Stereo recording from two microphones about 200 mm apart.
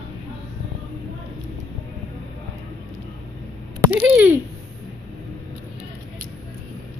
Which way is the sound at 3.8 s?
10° right (ahead or behind).